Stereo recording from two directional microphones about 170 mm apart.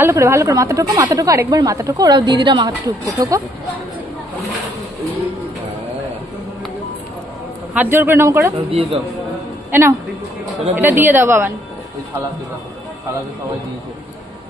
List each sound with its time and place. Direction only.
0.0 s a woman's voice: 15° right (ahead or behind)
7.7 s a man's voice: 10° right (ahead or behind)
8.6 s a man's voice: 35° right (ahead or behind)
9.7 s a woman's voice: 15° right (ahead or behind)